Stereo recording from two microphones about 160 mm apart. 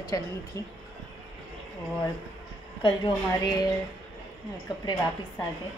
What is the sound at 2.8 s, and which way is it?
Speech, 25° left (ahead or behind).